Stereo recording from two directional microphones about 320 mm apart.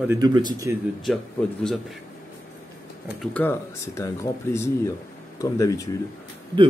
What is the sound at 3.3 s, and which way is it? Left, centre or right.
Speech, centre.